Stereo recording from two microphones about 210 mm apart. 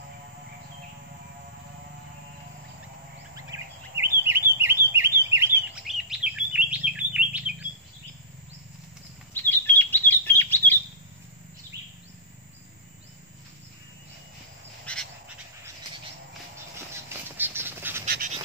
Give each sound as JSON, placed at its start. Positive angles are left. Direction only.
{"t": 3.9, "sound": "a sound", "side_deg": -55}
{"t": 4.3, "sound": "bird", "side_deg": -10}
{"t": 5.9, "sound": "chirp", "side_deg": 0}
{"t": 9.3, "sound": "chirp", "side_deg": 10}
{"t": 14.9, "sound": "frog", "side_deg": 5}
{"t": 17.1, "sound": "bird", "side_deg": -10}
{"t": 18.0, "sound": "duck", "side_deg": -40}